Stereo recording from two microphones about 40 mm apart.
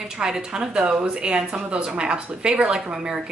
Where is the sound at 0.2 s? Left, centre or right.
Right.